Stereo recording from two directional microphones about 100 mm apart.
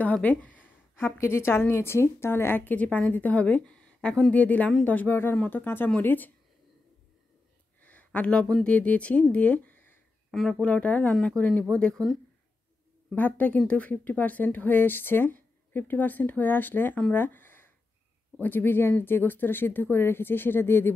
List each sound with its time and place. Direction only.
0.0 s a woman's voice: 15° left (ahead or behind)
7.8 s speech: 15° left (ahead or behind)
10.3 s speech: centre (ahead or behind)
10.6 s a woman's voice: 15° left (ahead or behind)
13.1 s a woman's voice: 15° left (ahead or behind)
17.1 s a sound: 20° left (ahead or behind)
18.4 s speech: 20° left (ahead or behind)